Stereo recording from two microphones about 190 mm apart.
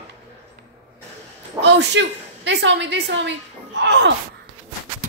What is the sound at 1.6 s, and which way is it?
A woman's voice, 70° right (ahead or behind).